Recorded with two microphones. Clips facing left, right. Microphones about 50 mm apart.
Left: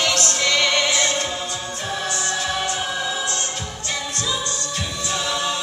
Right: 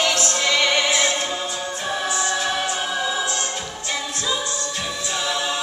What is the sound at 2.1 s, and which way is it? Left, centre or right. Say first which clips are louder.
Music: right 2 dB; centre.